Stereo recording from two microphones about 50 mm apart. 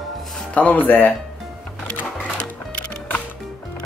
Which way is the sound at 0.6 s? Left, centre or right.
Left.